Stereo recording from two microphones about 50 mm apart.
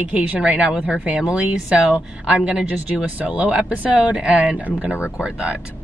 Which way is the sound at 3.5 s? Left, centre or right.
Centre.